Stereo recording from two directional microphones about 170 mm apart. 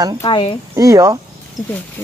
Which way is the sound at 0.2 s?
30° left (ahead or behind).